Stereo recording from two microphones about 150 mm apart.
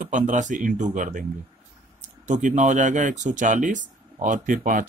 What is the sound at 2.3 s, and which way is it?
Speech, 55° right (ahead or behind).